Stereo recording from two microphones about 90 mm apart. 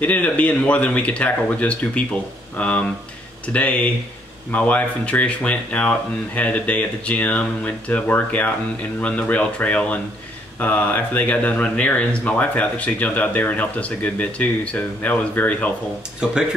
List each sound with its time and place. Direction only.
0.0 s speech: 15° left (ahead or behind)
16.2 s speech: 10° right (ahead or behind)